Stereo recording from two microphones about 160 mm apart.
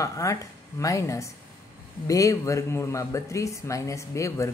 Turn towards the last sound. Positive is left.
turn(degrees=20)  # may be behind; listen again after turning